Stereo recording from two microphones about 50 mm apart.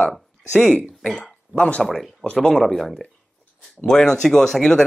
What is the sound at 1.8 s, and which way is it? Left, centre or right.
Speech, centre.